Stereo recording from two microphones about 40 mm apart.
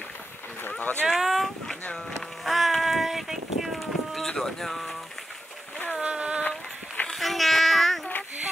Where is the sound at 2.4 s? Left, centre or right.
Centre.